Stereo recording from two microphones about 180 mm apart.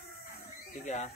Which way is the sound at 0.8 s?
40° left (ahead or behind).